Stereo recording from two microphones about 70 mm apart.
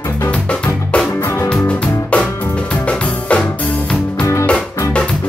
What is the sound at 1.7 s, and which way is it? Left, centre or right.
Music, centre.